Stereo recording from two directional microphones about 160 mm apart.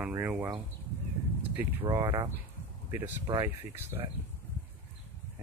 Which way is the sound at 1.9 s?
30° right (ahead or behind).